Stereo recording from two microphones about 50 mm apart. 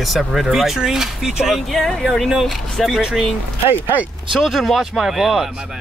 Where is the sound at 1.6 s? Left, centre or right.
Centre.